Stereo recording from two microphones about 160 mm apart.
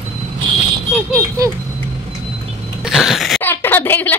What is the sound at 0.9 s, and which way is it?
Speech, 15° right (ahead or behind).